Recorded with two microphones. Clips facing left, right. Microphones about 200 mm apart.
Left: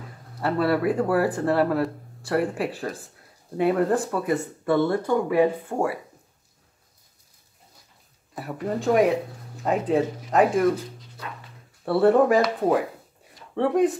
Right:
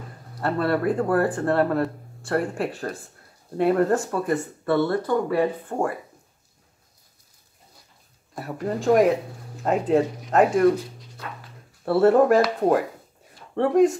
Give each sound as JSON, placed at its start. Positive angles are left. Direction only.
{"t": 0.4, "sound": "speech", "side_deg": 5}
{"t": 4.8, "sound": "speech", "side_deg": 15}
{"t": 8.4, "sound": "speech", "side_deg": 0}
{"t": 11.8, "sound": "speech", "side_deg": 0}